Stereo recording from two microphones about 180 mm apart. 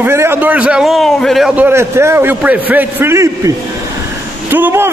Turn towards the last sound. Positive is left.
turn(degrees=-10)  # may be behind; listen again after turning